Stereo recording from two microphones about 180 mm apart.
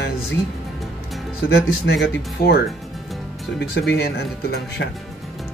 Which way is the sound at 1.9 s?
80° left.